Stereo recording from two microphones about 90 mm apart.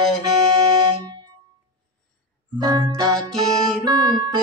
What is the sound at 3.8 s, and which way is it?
Music, 60° right (ahead or behind).